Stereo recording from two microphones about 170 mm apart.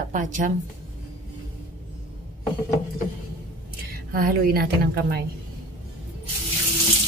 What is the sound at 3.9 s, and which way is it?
A woman's voice, 60° right (ahead or behind).